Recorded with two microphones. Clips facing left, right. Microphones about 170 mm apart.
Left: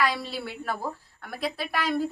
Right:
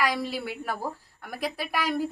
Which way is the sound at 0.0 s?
15° right (ahead or behind).